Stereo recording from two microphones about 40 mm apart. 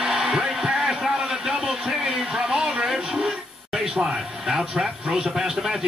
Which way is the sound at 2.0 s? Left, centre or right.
Centre.